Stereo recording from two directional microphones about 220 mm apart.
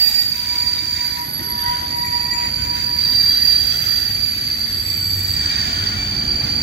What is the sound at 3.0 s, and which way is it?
Train, 50° right (ahead or behind).